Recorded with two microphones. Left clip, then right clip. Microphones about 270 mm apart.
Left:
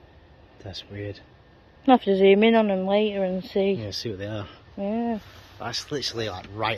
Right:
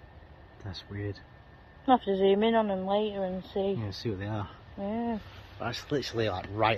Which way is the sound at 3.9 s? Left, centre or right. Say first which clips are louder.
Left 4 dB; centre.